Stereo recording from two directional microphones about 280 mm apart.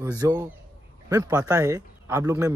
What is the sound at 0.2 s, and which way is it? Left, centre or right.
Speech, centre.